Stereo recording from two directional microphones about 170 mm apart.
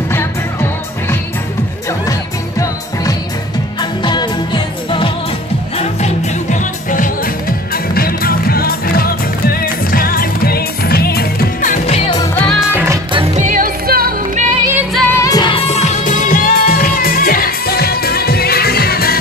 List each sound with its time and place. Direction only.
0.1 s music: 15° left (ahead or behind)
2.6 s music: 20° left (ahead or behind)
5.8 s music: 40° left (ahead or behind)
12.4 s music: centre (ahead or behind)
12.7 s music: 15° right (ahead or behind)
13.1 s music: 35° right (ahead or behind); by 14.4 s 60° right (ahead or behind)
15.0 s music: 15° left (ahead or behind); by 19.1 s 65° left (ahead or behind)